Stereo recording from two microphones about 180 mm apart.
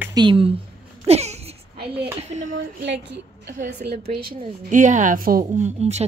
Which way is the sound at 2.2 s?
40° right (ahead or behind).